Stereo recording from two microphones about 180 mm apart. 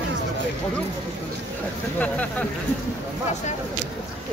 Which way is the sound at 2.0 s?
10° left (ahead or behind).